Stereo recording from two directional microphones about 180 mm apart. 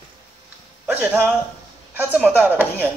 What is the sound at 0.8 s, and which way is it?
Speech, 10° right (ahead or behind).